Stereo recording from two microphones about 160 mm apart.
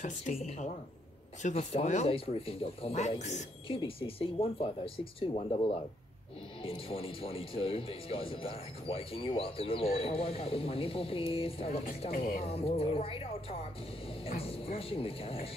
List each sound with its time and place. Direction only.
0.3 s speech: 50° left (ahead or behind)
12.1 s speech: 60° left (ahead or behind)
12.4 s speech: 35° left (ahead or behind)